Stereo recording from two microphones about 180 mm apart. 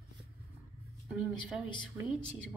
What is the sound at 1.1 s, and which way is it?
A woman's voice, centre (ahead or behind).